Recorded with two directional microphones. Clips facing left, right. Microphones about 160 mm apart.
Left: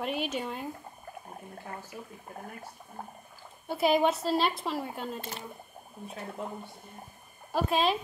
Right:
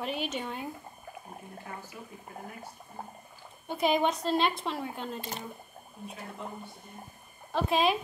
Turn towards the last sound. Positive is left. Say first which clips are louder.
# right 1 dB
turn(degrees=-5)  # may be behind; listen again after turning